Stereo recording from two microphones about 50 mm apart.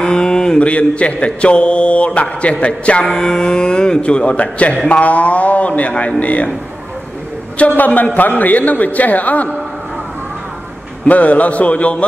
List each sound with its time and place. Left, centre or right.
0.0 s mantra: centre
3.0 s speech: centre
4.8 s mantra: left
7.5 s a man's voice: left
11.1 s mantra: left